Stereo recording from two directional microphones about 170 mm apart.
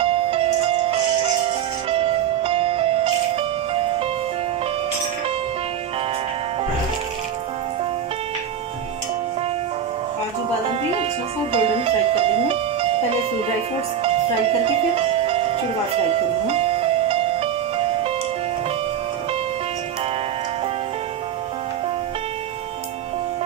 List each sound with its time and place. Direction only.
0.0 s music: 35° right (ahead or behind)
10.7 s music: 35° right (ahead or behind)
15.0 s music: 35° right (ahead or behind)